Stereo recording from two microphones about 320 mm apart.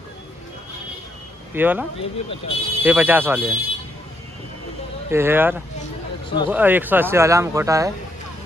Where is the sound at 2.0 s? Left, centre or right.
Centre.